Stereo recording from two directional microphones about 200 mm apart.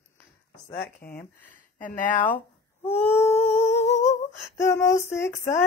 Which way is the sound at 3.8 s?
35° left (ahead or behind).